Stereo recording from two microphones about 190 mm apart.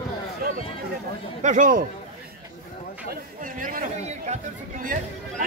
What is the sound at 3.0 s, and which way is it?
Speech, 45° right (ahead or behind).